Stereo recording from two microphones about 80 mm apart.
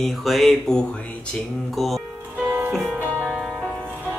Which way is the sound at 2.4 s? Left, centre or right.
Right.